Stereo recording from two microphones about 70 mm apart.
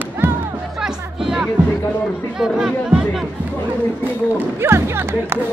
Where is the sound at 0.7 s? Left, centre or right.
Centre.